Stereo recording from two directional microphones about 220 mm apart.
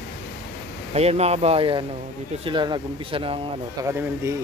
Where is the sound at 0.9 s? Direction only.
30° right (ahead or behind).